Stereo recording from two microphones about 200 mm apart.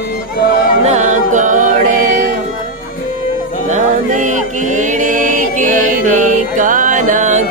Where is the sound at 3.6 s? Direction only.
40° right (ahead or behind).